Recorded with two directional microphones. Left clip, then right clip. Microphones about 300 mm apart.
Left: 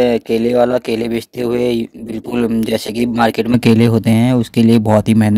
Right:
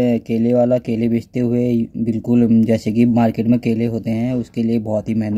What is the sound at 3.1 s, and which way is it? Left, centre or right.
Speech, left.